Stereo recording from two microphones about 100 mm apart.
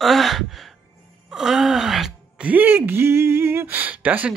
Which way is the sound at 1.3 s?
5° right (ahead or behind).